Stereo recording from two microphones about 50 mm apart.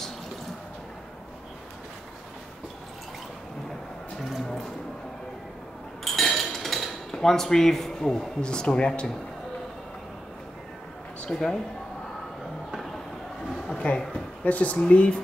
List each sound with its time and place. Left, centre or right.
4.2 s a sound: centre
6.0 s dishes: centre; by 9.1 s left
11.1 s speech: centre
13.7 s a woman's voice: centre